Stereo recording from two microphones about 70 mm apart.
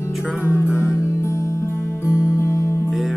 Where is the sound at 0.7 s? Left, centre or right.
Left.